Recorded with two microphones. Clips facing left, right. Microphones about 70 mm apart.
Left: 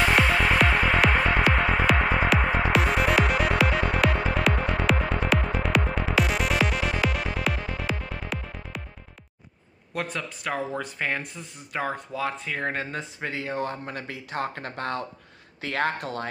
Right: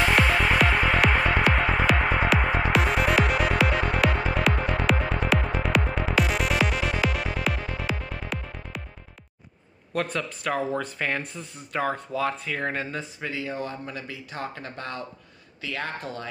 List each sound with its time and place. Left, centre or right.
0.0 s music: centre
9.9 s speech: centre; by 16.3 s left